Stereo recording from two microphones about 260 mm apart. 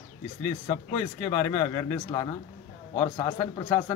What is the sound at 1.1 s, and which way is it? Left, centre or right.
Speech, centre.